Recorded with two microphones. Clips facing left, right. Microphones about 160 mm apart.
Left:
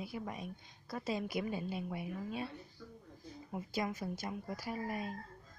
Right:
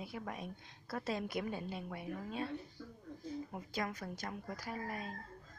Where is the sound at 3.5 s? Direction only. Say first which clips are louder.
Left 7 dB; 5° left (ahead or behind).